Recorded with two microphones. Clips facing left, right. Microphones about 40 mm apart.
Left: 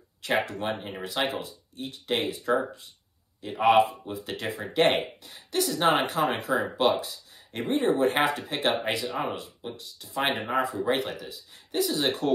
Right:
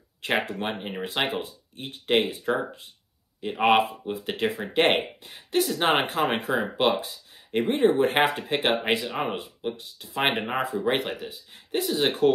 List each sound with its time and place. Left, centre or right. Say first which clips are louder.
0.2 s speech: right 1 dB; right
1.0 s speech: right 1 dB; right